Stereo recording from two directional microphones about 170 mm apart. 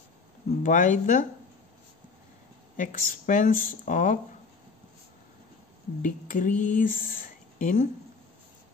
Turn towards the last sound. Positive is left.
turn(degrees=50)  # may be behind; listen again after turning